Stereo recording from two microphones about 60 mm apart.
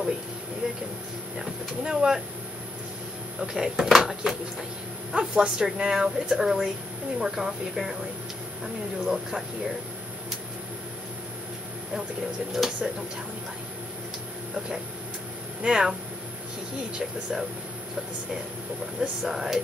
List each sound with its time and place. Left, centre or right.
1.4 s speech: centre
3.3 s speech: centre
9.0 s speech: centre
12.5 s speech: centre
15.6 s speech: centre
18.9 s speech: centre